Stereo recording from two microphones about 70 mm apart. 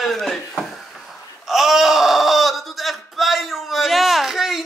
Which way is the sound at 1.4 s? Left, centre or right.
Centre.